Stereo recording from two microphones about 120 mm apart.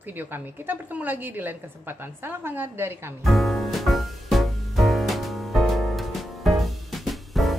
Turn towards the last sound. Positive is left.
turn(degrees=0)  # may be behind; listen again after turning